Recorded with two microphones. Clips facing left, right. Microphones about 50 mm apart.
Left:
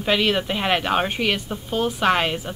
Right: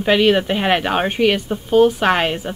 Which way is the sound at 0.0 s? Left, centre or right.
Centre.